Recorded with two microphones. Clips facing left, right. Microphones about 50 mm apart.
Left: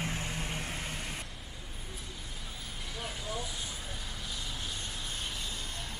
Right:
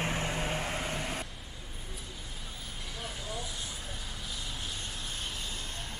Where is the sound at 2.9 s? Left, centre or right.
Centre.